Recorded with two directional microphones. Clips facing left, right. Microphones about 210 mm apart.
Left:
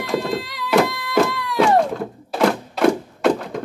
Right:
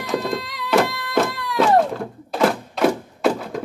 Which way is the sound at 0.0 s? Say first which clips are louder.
Left 1 dB; centre (ahead or behind).